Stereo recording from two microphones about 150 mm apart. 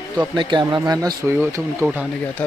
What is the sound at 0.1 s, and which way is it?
Speech, 30° right (ahead or behind).